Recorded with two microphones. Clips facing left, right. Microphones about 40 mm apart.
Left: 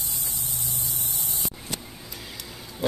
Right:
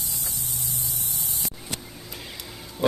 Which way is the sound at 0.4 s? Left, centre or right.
Left.